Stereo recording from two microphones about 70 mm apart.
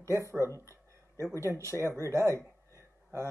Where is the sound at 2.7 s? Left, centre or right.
Right.